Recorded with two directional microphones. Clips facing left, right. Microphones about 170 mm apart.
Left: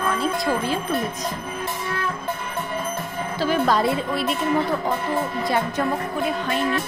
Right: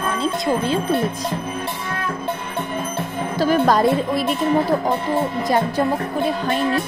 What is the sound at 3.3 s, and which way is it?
Speech, 45° right (ahead or behind).